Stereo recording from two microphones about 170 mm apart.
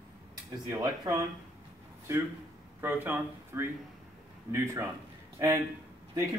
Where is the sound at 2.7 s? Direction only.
10° right (ahead or behind).